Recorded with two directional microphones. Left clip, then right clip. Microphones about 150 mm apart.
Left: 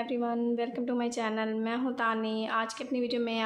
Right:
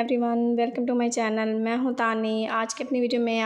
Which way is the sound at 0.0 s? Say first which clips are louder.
Right 7 dB; 45° right (ahead or behind).